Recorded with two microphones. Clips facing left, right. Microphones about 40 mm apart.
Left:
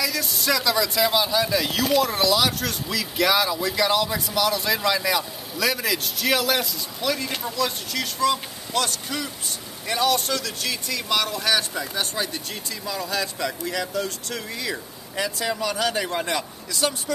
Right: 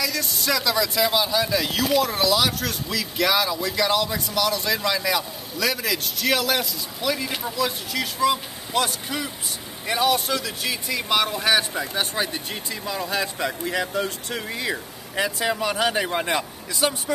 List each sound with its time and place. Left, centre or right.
0.0 s a man's voice: centre; by 16.9 s right